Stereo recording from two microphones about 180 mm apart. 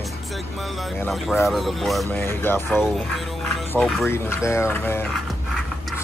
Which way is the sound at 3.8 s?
Centre (ahead or behind).